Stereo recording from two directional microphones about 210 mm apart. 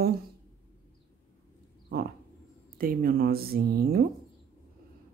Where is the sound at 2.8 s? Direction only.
45° right (ahead or behind).